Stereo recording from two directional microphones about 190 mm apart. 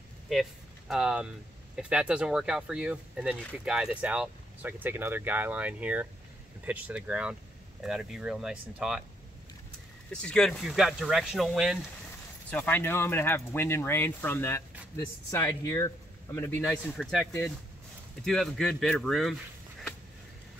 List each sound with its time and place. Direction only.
0.3 s speech: centre (ahead or behind)
10.1 s speech: 5° left (ahead or behind)
12.4 s speech: 10° left (ahead or behind)